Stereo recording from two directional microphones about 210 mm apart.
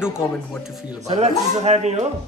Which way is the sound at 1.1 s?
30° right (ahead or behind).